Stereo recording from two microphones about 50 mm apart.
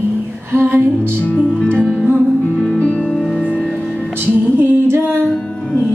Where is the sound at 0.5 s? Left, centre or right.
Right.